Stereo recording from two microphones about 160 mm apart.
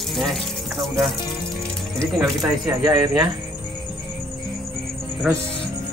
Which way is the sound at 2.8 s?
25° right (ahead or behind).